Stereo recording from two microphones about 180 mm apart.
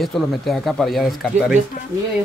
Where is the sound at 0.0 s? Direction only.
Centre (ahead or behind).